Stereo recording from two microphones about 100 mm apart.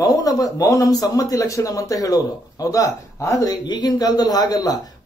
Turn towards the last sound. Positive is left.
turn(degrees=40)  # may be behind; listen again after turning